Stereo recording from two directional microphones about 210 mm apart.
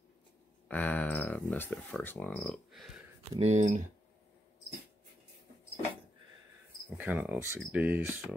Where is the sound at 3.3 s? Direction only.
30° right (ahead or behind).